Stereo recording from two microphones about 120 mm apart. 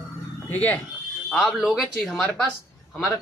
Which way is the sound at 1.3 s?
5° right (ahead or behind).